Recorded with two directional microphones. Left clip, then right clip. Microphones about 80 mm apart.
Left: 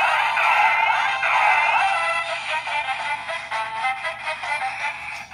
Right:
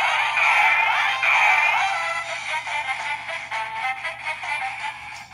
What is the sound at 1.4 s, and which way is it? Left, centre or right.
Music, centre.